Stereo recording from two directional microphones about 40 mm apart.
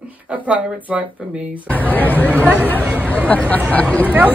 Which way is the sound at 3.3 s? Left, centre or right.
Left.